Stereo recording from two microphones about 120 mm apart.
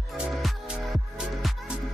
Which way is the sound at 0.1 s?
Centre (ahead or behind).